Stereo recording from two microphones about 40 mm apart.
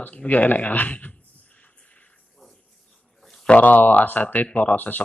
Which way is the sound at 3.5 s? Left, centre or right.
Left.